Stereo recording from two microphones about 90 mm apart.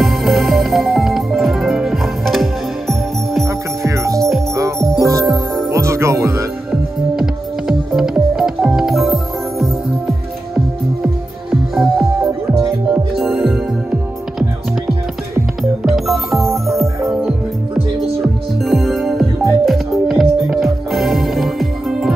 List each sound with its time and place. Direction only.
0.0 s music: centre (ahead or behind)
3.4 s music: 35° right (ahead or behind)
6.7 s music: 5° right (ahead or behind)
11.7 s music: centre (ahead or behind)
15.8 s music: centre (ahead or behind)
18.2 s music: centre (ahead or behind)